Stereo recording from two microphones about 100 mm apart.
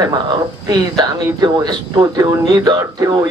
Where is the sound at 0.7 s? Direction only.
40° right (ahead or behind).